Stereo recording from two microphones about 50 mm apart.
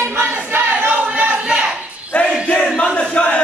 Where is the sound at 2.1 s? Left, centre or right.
Left.